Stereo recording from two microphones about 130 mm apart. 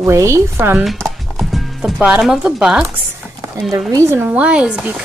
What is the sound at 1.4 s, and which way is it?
Clip-clop, centre (ahead or behind).